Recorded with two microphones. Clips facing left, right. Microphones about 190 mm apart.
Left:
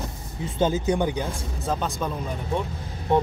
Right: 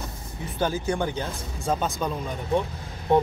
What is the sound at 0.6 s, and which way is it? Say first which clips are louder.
Speech: left 3 dB; 20° left (ahead or behind).